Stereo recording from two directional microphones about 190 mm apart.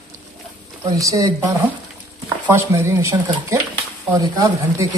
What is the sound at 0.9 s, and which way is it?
Speech, 15° right (ahead or behind).